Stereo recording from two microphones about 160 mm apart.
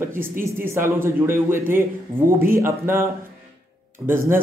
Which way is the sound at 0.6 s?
15° right (ahead or behind).